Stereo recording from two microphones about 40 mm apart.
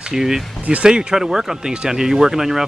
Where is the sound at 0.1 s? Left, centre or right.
Centre.